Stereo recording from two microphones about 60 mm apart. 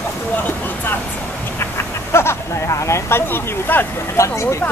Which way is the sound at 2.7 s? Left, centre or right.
Left.